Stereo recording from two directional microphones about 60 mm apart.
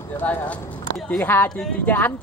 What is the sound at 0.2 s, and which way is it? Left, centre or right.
Speech, left.